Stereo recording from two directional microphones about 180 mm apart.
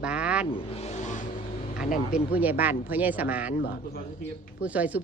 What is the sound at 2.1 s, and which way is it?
Speech, 10° right (ahead or behind).